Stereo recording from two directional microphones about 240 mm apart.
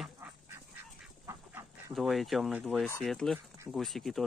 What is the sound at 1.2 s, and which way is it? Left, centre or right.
Goose, centre.